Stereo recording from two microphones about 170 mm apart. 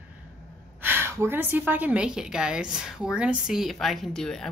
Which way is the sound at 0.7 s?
10° right (ahead or behind).